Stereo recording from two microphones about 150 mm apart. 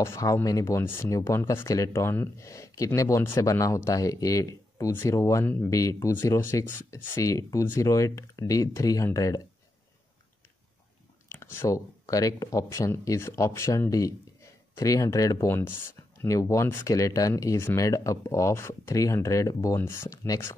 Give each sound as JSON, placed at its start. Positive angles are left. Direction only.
{"t": 0.0, "sound": "speech", "side_deg": 20}
{"t": 11.2, "sound": "speech", "side_deg": 15}